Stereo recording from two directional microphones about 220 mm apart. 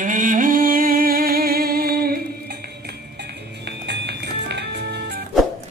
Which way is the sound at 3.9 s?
50° right (ahead or behind).